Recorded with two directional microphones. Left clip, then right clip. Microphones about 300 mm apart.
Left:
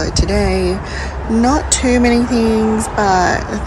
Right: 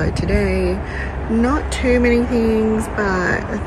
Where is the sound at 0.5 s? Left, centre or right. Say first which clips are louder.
Left 3 dB; left.